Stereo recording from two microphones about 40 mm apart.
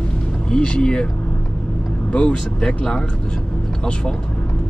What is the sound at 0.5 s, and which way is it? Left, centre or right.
Speech, left.